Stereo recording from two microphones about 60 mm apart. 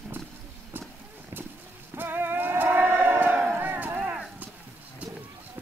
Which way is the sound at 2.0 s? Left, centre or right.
Right.